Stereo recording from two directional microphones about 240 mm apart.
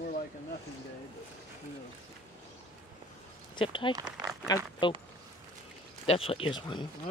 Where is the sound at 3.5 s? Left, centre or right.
Left.